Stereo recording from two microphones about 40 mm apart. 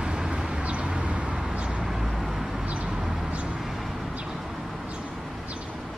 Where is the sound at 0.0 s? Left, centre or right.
Right.